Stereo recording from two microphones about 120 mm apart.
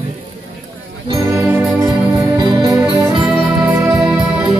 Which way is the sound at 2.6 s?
40° right (ahead or behind).